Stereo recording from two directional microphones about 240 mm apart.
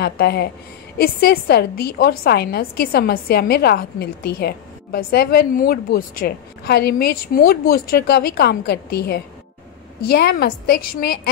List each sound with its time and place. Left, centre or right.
0.0 s a woman's voice: left